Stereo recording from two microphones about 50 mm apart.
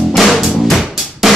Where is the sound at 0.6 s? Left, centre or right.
Centre.